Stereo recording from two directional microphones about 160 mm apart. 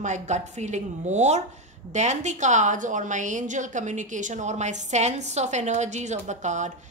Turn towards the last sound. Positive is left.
turn(degrees=-50)  # may be behind; listen again after turning